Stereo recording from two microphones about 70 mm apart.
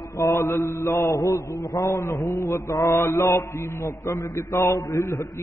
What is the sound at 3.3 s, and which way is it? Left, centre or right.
Mantra, left.